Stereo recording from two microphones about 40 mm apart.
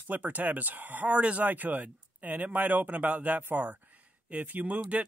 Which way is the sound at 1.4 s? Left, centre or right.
Right.